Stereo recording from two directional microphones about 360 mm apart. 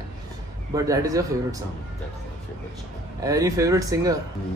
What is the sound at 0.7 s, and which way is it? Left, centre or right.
Speech, centre.